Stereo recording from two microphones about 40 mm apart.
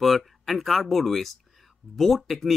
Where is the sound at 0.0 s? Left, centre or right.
Centre.